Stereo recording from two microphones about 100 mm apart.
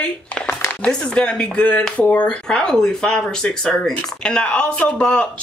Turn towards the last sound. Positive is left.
turn(degrees=10)  # may be behind; listen again after turning